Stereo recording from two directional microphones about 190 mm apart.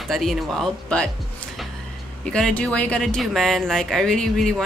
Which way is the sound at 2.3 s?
5° left (ahead or behind).